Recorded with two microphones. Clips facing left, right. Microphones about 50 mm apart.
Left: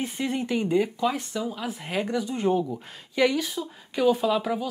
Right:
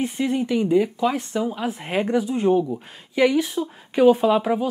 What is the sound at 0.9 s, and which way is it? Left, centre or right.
Speech, right.